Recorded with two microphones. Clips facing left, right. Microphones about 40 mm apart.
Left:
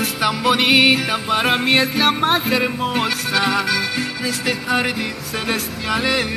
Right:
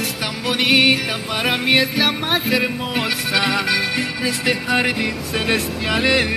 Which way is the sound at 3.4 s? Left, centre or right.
Right.